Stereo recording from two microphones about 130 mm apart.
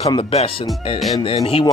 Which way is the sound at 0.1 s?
45° left (ahead or behind).